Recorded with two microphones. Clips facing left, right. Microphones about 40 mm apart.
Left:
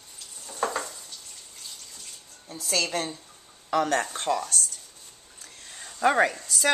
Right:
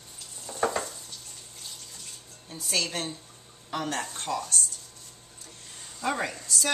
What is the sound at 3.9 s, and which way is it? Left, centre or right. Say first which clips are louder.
Speech: left 6 dB; left.